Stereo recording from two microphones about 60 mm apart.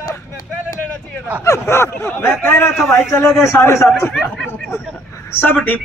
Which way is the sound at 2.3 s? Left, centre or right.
Left.